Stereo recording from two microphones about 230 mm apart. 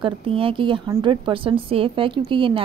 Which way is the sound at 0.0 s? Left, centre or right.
Right.